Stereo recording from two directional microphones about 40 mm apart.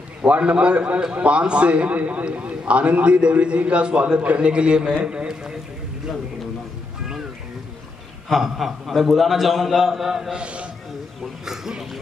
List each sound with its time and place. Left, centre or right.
0.2 s a man's voice: right
4.4 s a man's voice: right
8.3 s a man's voice: centre
10.3 s a man's voice: right
11.4 s speech: centre